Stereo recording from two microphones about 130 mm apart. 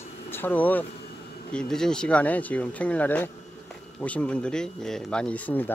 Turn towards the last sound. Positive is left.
turn(degrees=15)  # may be behind; listen again after turning